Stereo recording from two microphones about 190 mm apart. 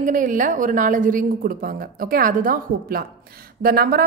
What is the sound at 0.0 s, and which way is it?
A woman's voice, 45° right (ahead or behind).